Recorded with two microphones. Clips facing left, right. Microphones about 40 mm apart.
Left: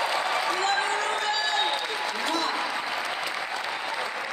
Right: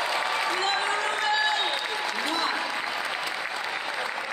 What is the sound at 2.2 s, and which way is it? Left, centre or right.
Applause, right.